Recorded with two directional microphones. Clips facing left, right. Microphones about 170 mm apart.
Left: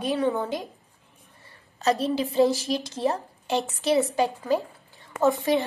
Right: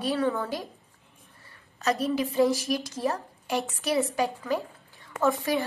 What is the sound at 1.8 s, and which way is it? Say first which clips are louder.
A woman's voice: left 2 dB; 30° left (ahead or behind).